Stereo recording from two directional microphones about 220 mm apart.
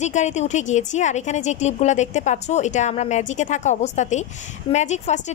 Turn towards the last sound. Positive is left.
turn(degrees=30)  # may be behind; listen again after turning